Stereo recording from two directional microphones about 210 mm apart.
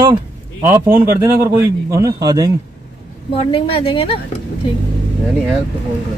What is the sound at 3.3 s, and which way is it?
Speech, 25° left (ahead or behind).